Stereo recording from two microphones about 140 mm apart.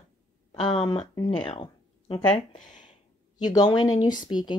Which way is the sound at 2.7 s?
60° left (ahead or behind).